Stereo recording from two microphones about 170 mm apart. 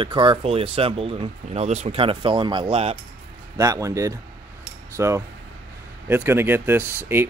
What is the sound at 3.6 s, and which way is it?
Speech, 20° right (ahead or behind).